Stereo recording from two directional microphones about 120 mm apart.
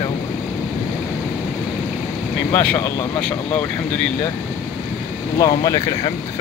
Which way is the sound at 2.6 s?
10° left (ahead or behind).